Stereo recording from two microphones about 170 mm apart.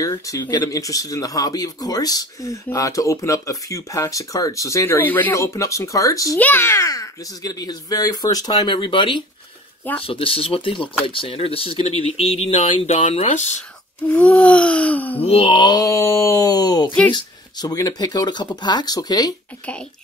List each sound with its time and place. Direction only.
0.0 s speech: 20° left (ahead or behind); by 13.6 s 45° left (ahead or behind)
14.1 s a sound: 10° left (ahead or behind)
15.1 s speech: 35° left (ahead or behind)